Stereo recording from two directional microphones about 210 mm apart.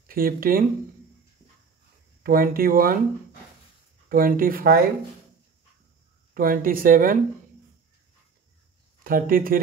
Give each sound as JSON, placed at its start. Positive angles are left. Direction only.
{"t": 0.0, "sound": "speech", "side_deg": -45}
{"t": 2.2, "sound": "speech", "side_deg": -45}
{"t": 4.1, "sound": "speech", "side_deg": -40}
{"t": 6.3, "sound": "speech", "side_deg": -40}
{"t": 9.0, "sound": "speech", "side_deg": -45}